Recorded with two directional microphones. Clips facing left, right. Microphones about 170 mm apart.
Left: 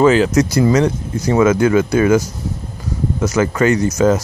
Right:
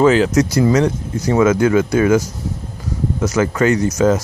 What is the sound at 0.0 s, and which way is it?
Speech, 15° left (ahead or behind).